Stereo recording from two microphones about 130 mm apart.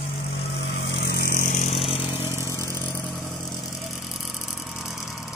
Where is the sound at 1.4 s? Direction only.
70° left (ahead or behind).